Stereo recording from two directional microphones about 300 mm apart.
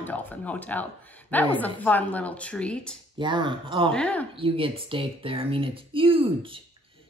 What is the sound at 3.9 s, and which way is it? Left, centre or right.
Speech, centre.